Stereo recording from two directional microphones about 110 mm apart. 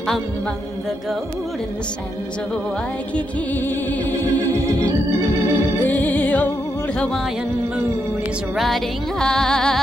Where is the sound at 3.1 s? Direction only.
15° left (ahead or behind).